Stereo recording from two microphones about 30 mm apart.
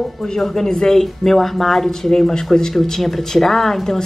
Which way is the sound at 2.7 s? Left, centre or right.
Centre.